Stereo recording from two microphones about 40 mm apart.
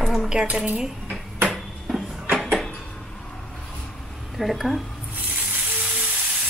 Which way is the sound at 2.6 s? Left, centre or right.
Centre.